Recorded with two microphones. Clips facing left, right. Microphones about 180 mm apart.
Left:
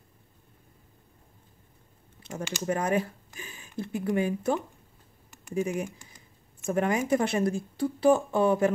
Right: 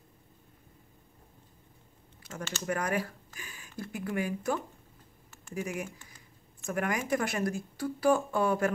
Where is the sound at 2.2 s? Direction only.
25° left (ahead or behind).